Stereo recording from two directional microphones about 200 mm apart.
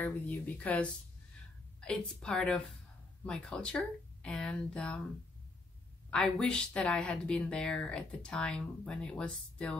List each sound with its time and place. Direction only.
0.0 s speech: 10° left (ahead or behind)
6.0 s speech: 5° left (ahead or behind)